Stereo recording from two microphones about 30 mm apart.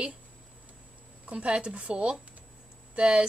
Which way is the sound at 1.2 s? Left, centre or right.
Right.